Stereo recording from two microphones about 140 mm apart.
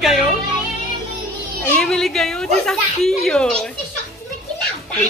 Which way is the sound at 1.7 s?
5° left (ahead or behind).